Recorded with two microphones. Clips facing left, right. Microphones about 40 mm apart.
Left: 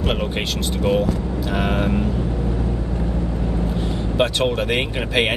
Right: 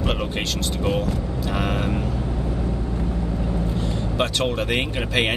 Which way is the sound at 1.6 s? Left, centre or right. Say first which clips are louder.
Left 4 dB; left.